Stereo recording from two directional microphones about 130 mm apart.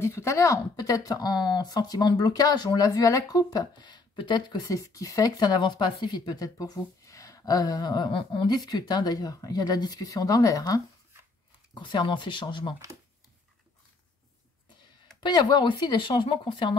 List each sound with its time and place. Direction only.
0.0 s speech: 20° left (ahead or behind)
11.7 s speech: 35° left (ahead or behind)
15.2 s speech: 35° left (ahead or behind)